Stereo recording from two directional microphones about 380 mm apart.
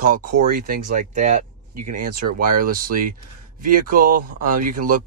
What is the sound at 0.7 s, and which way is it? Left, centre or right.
Speech, centre.